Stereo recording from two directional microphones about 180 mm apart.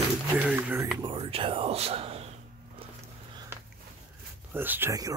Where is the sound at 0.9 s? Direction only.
30° right (ahead or behind).